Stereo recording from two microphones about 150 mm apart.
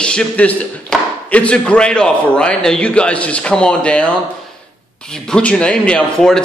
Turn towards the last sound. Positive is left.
turn(degrees=5)  # may be behind; listen again after turning